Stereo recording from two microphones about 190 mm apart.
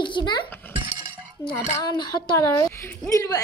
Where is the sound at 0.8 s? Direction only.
20° right (ahead or behind).